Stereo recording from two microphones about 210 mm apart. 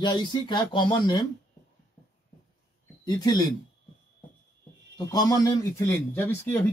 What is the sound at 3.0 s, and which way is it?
Speech, 20° left (ahead or behind).